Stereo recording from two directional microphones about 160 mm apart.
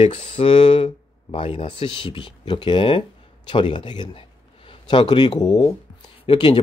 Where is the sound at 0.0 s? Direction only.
35° left (ahead or behind).